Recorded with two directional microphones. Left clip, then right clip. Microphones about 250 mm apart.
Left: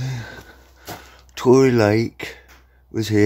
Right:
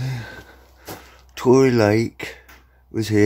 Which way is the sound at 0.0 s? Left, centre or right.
Centre.